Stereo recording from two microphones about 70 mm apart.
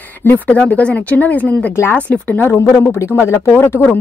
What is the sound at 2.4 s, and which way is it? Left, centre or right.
Speech, left.